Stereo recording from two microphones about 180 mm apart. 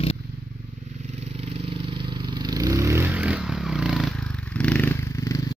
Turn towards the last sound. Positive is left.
turn(degrees=15)  # may be behind; listen again after turning